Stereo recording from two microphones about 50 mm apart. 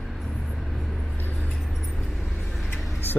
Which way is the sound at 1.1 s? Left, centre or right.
Left.